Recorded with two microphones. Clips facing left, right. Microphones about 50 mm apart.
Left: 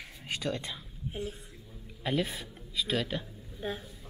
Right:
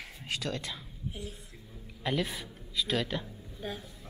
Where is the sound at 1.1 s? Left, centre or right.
Left.